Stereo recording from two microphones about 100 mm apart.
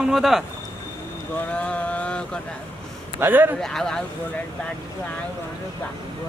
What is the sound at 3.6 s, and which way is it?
Speech, 5° left (ahead or behind).